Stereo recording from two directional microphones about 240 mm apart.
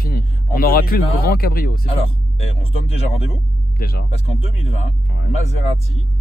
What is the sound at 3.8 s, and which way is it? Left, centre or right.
Speech, left.